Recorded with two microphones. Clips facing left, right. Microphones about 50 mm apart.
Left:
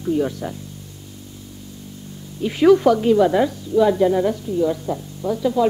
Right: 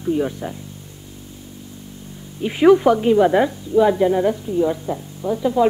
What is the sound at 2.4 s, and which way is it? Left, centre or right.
A woman's voice, centre.